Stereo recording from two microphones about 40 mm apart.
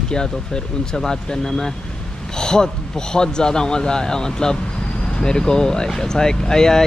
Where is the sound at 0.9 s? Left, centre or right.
Centre.